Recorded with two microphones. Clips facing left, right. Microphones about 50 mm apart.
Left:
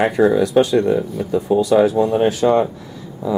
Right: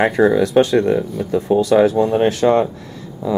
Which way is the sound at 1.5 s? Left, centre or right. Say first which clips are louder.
Right 1 dB; right.